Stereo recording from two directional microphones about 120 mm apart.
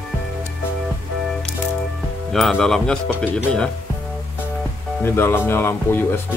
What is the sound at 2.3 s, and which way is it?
Speech, centre (ahead or behind).